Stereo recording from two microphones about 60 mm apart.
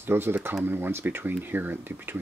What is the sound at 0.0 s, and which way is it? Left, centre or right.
Speech, right.